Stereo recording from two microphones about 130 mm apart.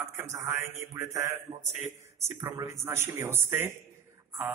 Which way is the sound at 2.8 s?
20° right (ahead or behind).